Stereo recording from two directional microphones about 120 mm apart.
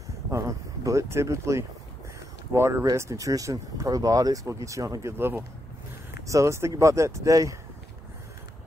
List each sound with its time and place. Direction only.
0.3 s speech: 25° right (ahead or behind)